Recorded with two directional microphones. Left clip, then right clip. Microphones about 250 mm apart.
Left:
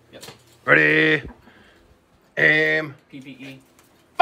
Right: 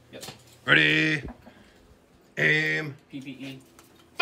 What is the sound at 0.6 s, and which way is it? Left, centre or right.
Speech, centre.